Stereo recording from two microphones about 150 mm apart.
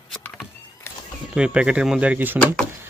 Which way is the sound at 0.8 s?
15° left (ahead or behind).